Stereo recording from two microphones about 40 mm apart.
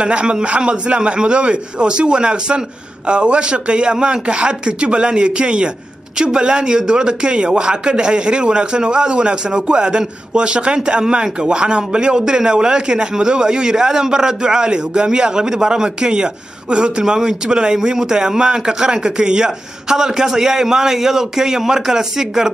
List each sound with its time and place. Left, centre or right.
0.0 s a man's voice: right
17.0 s speech: centre